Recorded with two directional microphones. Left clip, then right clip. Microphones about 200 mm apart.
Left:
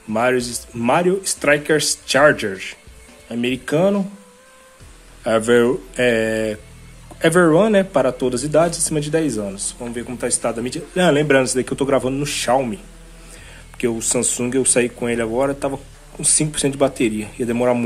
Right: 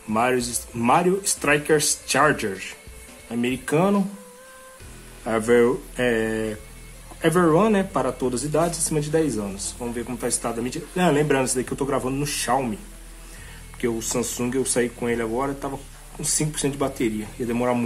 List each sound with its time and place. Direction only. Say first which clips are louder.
0.1 s speech: left 4 dB; 15° left (ahead or behind)
5.2 s speech: left 4 dB; 20° left (ahead or behind)
13.7 s speech: left 5 dB; 25° left (ahead or behind)